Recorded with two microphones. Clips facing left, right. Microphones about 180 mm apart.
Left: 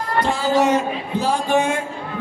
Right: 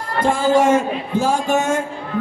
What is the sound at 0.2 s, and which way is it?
Speech, 50° right (ahead or behind).